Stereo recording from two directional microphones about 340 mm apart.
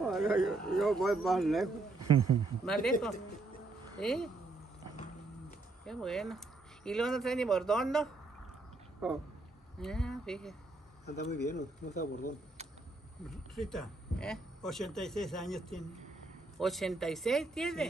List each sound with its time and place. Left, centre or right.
0.0 s speech: centre
2.0 s a man's voice: right
2.6 s speech: centre
5.9 s speech: centre
11.1 s speech: left
13.6 s speech: centre